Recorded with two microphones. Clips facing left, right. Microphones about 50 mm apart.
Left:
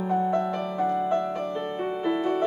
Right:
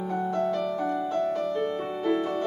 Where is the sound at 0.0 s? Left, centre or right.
Left.